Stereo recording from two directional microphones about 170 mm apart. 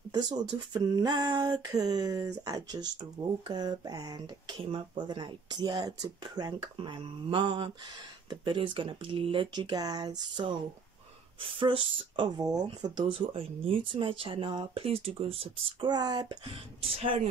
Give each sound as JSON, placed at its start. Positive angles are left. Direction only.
{"t": 0.1, "sound": "speech", "side_deg": -25}